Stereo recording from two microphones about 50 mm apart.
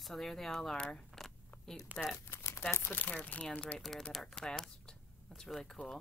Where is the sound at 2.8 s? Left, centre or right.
Left.